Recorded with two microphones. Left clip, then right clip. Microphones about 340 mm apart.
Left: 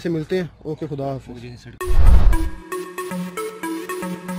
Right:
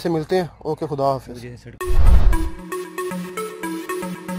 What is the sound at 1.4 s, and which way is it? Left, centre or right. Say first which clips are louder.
Music: right 1 dB; centre.